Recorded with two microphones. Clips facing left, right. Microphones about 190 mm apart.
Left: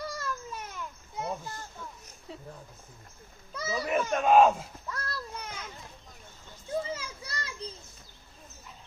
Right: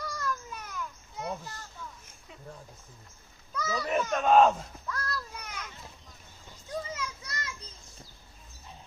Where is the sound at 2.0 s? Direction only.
40° left (ahead or behind).